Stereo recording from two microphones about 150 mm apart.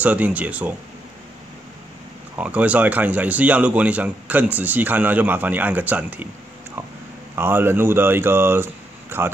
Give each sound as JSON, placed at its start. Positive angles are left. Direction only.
{"t": 0.0, "sound": "speech", "side_deg": -10}
{"t": 2.3, "sound": "speech", "side_deg": -10}
{"t": 7.3, "sound": "speech", "side_deg": -15}